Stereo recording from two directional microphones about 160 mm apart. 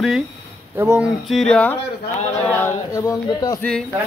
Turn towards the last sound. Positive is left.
turn(degrees=20)  # may be behind; listen again after turning